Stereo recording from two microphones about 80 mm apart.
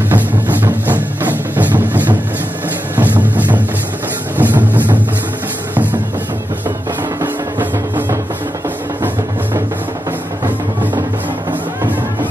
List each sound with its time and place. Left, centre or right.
0.1 s music: right